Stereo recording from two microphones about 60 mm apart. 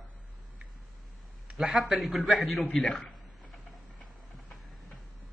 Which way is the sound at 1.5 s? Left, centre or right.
Centre.